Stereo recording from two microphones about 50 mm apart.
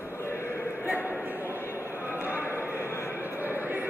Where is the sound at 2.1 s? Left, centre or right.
Right.